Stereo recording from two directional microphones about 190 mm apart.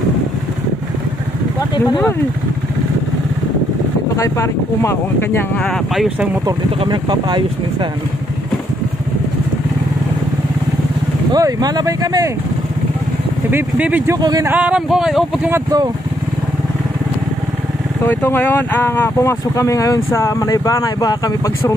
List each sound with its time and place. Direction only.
4.2 s speech: 15° left (ahead or behind)
5.6 s speech: centre (ahead or behind)
6.4 s speech: 25° right (ahead or behind)
11.3 s speech: 20° right (ahead or behind)
13.5 s speech: 10° right (ahead or behind)
14.1 s speech: 20° right (ahead or behind)
14.5 s speech: 5° right (ahead or behind)
15.5 s speech: 20° right (ahead or behind)
18.0 s speech: 10° left (ahead or behind)